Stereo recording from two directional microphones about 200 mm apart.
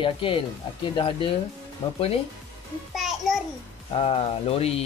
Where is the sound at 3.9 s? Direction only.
30° left (ahead or behind).